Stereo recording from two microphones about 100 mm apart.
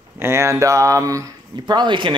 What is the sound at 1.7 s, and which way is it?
Speech, 50° right (ahead or behind).